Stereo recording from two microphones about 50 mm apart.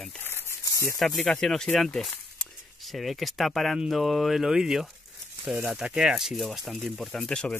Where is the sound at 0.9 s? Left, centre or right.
Centre.